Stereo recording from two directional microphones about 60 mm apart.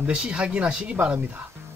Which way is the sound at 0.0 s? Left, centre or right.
Centre.